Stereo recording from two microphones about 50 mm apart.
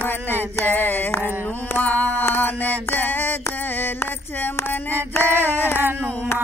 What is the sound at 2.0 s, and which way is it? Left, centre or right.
Music, left.